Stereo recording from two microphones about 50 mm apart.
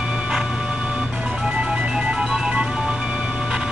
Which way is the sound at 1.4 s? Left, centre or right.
Centre.